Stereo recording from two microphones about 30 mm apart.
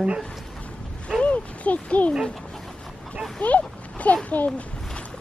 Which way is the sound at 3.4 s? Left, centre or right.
Left.